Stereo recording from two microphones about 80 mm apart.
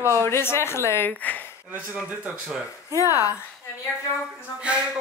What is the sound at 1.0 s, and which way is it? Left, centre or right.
Speech, left.